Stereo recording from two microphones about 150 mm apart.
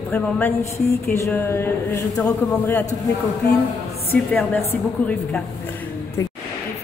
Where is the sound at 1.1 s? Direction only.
20° left (ahead or behind).